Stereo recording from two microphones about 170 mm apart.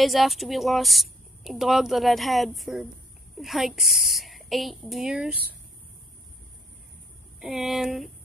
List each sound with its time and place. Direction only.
0.0 s speech: centre (ahead or behind)
7.3 s speech: centre (ahead or behind)